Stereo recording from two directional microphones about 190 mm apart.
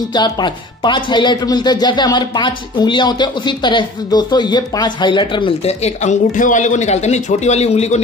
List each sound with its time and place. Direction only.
0.1 s speech: 25° left (ahead or behind)